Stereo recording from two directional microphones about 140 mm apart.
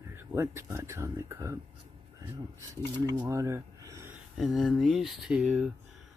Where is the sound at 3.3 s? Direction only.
20° right (ahead or behind).